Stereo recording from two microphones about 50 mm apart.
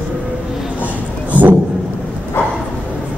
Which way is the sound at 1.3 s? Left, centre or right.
Right.